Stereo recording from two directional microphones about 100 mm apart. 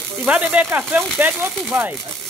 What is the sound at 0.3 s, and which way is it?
Speech, 10° right (ahead or behind).